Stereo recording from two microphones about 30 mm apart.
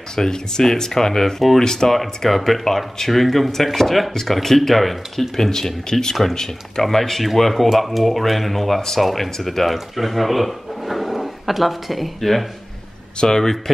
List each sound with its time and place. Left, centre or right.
0.1 s speech: centre
2.0 s speech: centre
13.2 s speech: centre